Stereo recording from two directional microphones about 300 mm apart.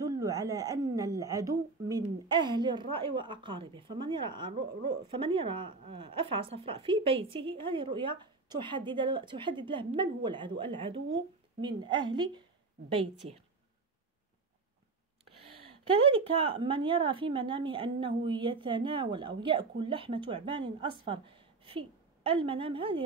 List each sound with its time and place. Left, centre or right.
0.0 s a woman's voice: centre
13.2 s a woman's voice: right
15.5 s a woman's voice: centre